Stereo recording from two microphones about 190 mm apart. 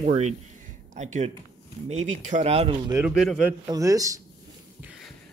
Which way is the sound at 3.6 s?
20° right (ahead or behind).